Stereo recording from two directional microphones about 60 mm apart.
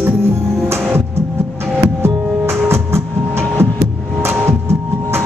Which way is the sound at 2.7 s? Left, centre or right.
Right.